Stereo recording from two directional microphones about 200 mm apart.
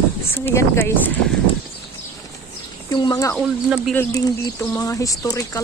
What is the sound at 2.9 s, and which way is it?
Speech, 20° left (ahead or behind).